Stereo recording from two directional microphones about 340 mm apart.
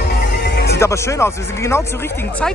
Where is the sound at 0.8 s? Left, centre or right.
Centre.